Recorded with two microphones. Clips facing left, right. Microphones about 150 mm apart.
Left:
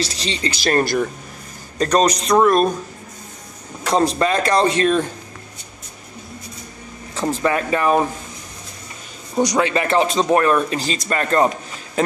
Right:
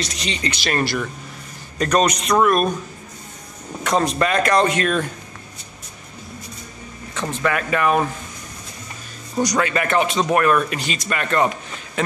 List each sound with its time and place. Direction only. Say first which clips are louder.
0.0 s speech: left 2 dB; 30° left (ahead or behind)
3.8 s speech: left 2 dB; 30° left (ahead or behind)
7.2 s speech: left 3 dB; 30° left (ahead or behind)
9.3 s a man's voice: left 2 dB; 20° left (ahead or behind)